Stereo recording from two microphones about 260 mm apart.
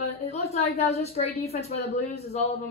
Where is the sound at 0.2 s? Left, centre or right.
Left.